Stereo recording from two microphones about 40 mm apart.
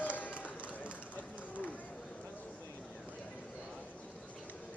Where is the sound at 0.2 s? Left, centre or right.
Left.